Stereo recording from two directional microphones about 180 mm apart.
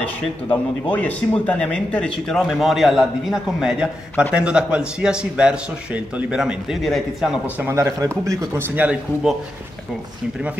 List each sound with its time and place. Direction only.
0.2 s speech: 10° left (ahead or behind)
7.6 s speech: 15° right (ahead or behind)